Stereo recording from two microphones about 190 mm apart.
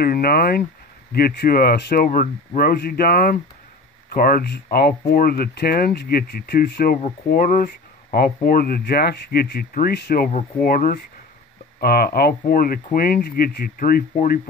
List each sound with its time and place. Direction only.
0.0 s speech: 50° left (ahead or behind)